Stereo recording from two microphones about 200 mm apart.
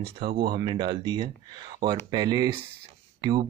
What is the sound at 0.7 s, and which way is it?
Speech, 20° right (ahead or behind).